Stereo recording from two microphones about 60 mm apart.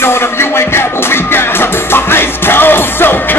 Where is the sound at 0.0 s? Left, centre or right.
Left.